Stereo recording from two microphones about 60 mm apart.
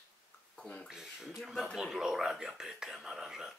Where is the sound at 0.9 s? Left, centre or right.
Centre.